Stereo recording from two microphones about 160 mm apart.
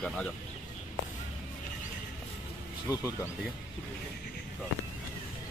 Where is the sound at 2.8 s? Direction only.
20° left (ahead or behind).